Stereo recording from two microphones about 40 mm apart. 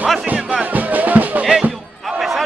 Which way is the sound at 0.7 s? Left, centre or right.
Right.